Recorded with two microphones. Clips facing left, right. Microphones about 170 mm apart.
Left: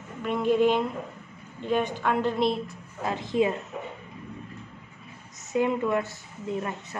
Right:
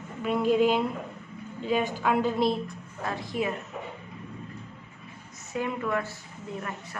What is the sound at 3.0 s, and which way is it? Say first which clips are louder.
Speech: left 5 dB; 20° left (ahead or behind).